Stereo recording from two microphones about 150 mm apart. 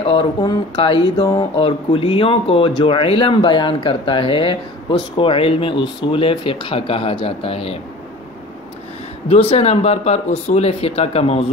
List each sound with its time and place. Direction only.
0.0 s speech: 40° left (ahead or behind)
9.3 s speech: 40° left (ahead or behind)